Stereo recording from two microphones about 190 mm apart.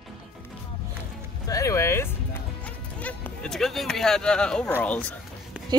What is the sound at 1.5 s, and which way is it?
Speech, 15° left (ahead or behind).